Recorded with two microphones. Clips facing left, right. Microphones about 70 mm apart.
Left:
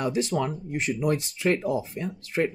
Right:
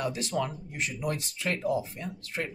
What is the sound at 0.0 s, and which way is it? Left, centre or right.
Speech, left.